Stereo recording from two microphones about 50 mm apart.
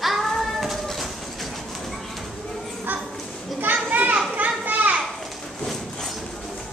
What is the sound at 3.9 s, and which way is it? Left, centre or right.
Children playing, right.